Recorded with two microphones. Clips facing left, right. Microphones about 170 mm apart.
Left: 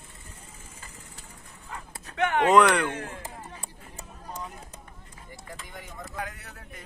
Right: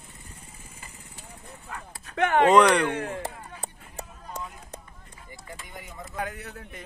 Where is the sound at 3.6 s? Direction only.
70° right (ahead or behind).